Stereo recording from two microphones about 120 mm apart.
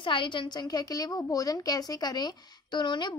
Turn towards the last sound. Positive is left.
turn(degrees=40)  # may be behind; listen again after turning